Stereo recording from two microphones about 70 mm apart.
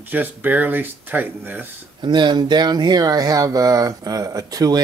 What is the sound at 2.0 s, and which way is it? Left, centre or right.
Speech, right.